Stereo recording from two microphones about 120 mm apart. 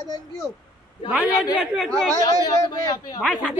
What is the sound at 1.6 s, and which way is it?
Speech, 5° right (ahead or behind).